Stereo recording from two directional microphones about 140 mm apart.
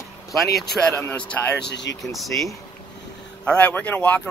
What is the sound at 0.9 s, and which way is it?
Speech, 20° left (ahead or behind).